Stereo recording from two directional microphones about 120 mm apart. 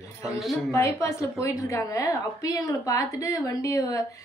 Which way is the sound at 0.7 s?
25° left (ahead or behind).